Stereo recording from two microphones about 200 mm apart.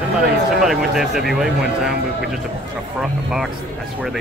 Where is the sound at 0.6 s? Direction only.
Centre (ahead or behind).